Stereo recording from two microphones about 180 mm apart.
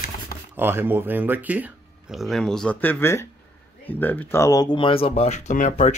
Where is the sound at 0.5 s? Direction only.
10° right (ahead or behind).